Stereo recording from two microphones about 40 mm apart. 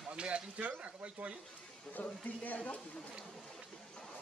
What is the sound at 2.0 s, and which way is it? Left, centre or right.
Speech, left.